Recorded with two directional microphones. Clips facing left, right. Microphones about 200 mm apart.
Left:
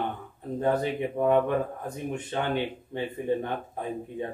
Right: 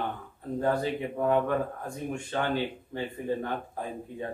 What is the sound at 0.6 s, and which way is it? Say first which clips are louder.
Speech: left 2 dB; 20° left (ahead or behind).